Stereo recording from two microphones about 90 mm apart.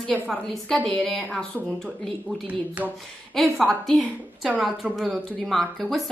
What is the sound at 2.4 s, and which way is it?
Speech, 15° right (ahead or behind).